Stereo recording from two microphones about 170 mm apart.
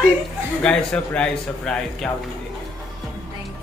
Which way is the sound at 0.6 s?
5° left (ahead or behind).